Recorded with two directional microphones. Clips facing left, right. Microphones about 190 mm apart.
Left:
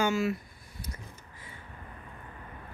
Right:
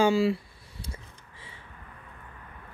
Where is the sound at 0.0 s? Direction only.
30° right (ahead or behind).